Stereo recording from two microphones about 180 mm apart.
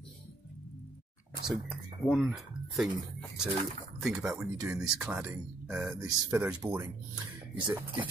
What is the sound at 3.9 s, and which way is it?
Speech, centre (ahead or behind).